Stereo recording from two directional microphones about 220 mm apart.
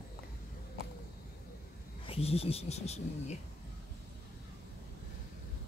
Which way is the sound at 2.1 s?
25° left (ahead or behind).